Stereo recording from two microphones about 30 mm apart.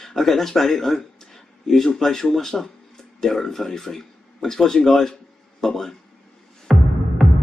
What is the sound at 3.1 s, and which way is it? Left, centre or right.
Speech, centre.